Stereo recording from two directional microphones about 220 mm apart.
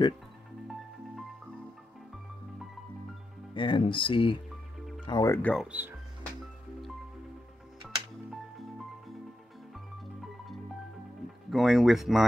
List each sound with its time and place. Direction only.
3.5 s speech: 20° left (ahead or behind); by 5.9 s 5° right (ahead or behind)
8.3 s music: centre (ahead or behind)
11.5 s speech: centre (ahead or behind)